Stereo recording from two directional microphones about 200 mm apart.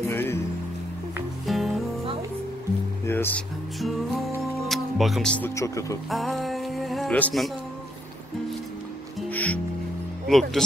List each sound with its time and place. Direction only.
0.0 s music: 10° left (ahead or behind)
1.4 s music: centre (ahead or behind)
3.1 s speech: 10° left (ahead or behind)
4.6 s music: centre (ahead or behind)
5.6 s speech: 15° left (ahead or behind)
6.0 s music: centre (ahead or behind)
9.3 s music: 10° left (ahead or behind)
10.2 s speech: centre (ahead or behind)